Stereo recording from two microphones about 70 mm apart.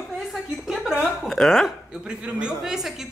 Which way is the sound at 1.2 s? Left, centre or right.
Centre.